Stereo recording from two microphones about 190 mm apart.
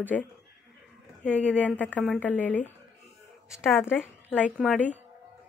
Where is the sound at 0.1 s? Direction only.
Centre (ahead or behind).